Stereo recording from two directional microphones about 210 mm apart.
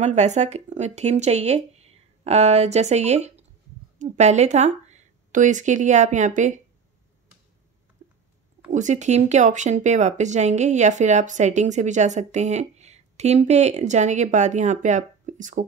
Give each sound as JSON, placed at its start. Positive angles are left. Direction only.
{"t": 0.0, "sound": "speech", "side_deg": -35}
{"t": 8.0, "sound": "a sound", "side_deg": -30}
{"t": 8.7, "sound": "speech", "side_deg": -35}